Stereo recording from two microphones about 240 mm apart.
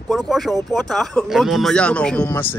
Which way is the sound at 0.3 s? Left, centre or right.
Centre.